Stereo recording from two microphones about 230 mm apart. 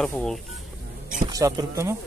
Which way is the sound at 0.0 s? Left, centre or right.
Centre.